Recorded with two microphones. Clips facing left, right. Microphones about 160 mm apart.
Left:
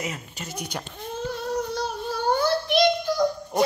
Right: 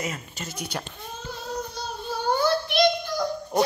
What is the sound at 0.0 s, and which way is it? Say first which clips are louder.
Speech: even; 15° left (ahead or behind).